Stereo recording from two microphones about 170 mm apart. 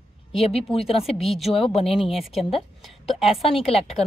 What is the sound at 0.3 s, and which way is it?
Speech, 35° left (ahead or behind).